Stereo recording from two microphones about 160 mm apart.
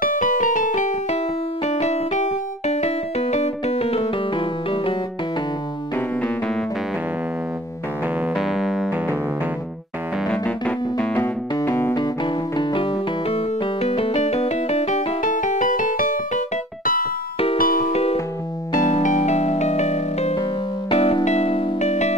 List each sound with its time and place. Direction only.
0.0 s music: 55° left (ahead or behind); by 4.9 s 35° left (ahead or behind)
8.4 s keyboard: centre (ahead or behind)
10.2 s keyboard: 5° left (ahead or behind)
11.5 s music: 15° left (ahead or behind)
12.5 s music: 30° left (ahead or behind); by 16.2 s 55° left (ahead or behind)
17.6 s music: 60° left (ahead or behind)
18.9 s music: 50° left (ahead or behind)